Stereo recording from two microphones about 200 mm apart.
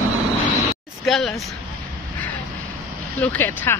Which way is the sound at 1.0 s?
Centre (ahead or behind).